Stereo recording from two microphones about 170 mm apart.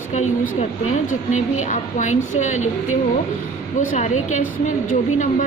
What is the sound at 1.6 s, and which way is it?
A woman's voice, 45° left (ahead or behind).